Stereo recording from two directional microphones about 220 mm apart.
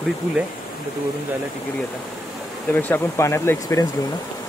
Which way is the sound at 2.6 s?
10° left (ahead or behind).